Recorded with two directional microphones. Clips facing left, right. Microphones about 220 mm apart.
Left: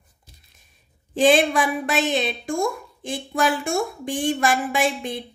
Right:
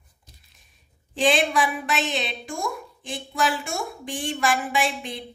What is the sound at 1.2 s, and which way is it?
A woman's voice, 50° left (ahead or behind).